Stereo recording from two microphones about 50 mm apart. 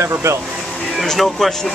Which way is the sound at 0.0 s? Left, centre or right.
Right.